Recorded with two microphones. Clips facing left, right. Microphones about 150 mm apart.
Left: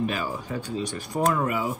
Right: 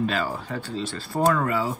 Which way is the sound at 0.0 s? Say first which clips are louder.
Right 2 dB; 15° left (ahead or behind).